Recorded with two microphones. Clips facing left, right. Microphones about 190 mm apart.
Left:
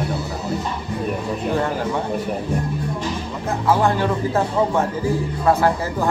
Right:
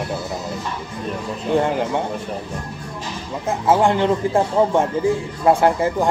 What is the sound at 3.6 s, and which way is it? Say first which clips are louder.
Speech: right 2 dB; 25° right (ahead or behind).